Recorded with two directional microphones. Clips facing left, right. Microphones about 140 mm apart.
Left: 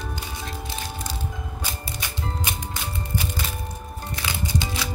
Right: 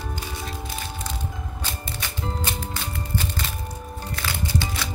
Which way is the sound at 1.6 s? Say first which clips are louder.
Right 1 dB; 15° left (ahead or behind).